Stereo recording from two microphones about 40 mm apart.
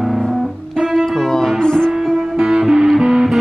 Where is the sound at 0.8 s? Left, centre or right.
Centre.